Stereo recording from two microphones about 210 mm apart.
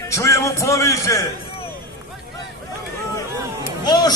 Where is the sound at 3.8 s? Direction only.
20° left (ahead or behind).